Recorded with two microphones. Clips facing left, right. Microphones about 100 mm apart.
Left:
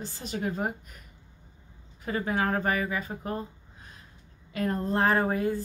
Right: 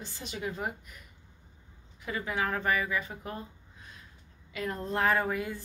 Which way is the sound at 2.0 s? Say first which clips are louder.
Left 4 dB; 40° left (ahead or behind).